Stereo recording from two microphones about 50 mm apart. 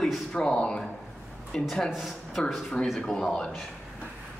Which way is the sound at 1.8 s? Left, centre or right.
Centre.